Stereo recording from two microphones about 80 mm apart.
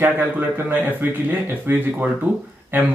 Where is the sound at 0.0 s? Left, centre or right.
Right.